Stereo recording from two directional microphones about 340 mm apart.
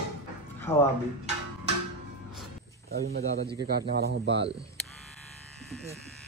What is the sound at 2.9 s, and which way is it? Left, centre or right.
Speech, right.